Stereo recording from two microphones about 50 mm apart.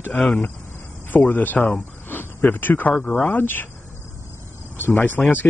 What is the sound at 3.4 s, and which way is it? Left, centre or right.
Speech, left.